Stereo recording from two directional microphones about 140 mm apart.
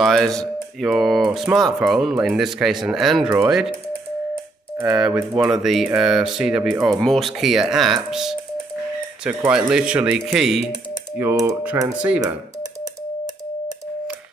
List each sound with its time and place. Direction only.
0.0 s speech: centre (ahead or behind)
4.7 s speech: 15° right (ahead or behind)
5.0 s speech: 5° right (ahead or behind)
9.5 s speech: 5° right (ahead or behind)
11.1 s speech: 20° right (ahead or behind)